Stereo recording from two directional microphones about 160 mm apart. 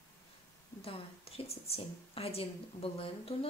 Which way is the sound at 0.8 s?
40° left (ahead or behind).